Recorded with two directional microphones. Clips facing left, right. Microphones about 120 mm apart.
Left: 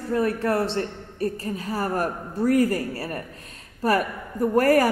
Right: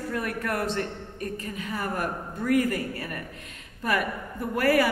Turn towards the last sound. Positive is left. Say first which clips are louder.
# left 5 dB
turn(degrees=40)  # may be behind; listen again after turning